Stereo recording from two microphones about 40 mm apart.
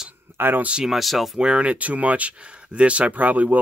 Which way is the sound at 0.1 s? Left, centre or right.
Right.